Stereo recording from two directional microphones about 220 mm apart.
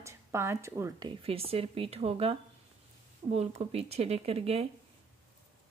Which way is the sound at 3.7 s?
25° right (ahead or behind).